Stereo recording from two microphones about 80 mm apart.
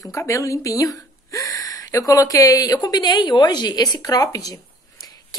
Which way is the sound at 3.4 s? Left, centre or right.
Left.